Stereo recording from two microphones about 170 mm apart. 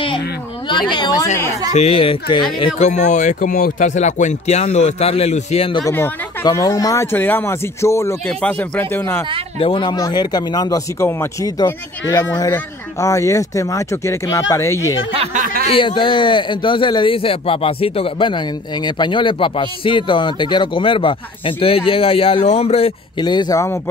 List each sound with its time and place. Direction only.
0.7 s speech: 25° left (ahead or behind)
1.7 s speech: 35° left (ahead or behind)
2.6 s speech: 40° left (ahead or behind)
5.9 s speech: 10° left (ahead or behind)
9.6 s speech: 30° left (ahead or behind)
15.1 s a sound: 50° right (ahead or behind)
15.6 s speech: 30° left (ahead or behind)